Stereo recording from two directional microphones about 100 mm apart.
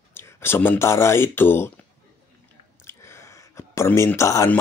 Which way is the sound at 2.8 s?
25° left (ahead or behind).